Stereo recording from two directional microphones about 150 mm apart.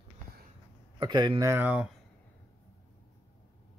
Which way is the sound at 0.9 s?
30° right (ahead or behind).